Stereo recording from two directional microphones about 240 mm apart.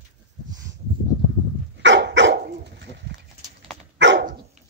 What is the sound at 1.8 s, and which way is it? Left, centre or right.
Dog, right.